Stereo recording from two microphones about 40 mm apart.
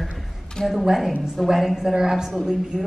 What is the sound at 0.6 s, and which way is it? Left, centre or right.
Speech, centre.